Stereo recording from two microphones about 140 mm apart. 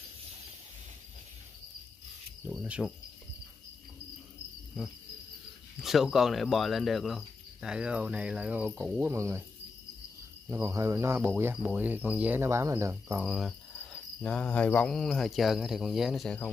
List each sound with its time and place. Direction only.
2.5 s cricket: 5° right (ahead or behind)
5.8 s cricket: centre (ahead or behind)
9.0 s speech: 20° right (ahead or behind)
10.5 s speech: 20° right (ahead or behind)
13.2 s cricket: centre (ahead or behind)